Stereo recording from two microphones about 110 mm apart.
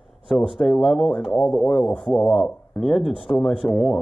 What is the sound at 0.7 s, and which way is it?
Speech, centre (ahead or behind).